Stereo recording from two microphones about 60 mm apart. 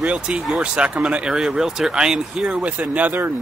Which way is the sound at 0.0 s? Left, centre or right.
Centre.